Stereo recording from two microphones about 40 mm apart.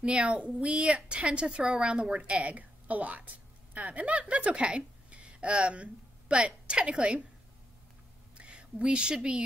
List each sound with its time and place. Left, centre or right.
0.0 s a woman's voice: right
8.4 s speech: right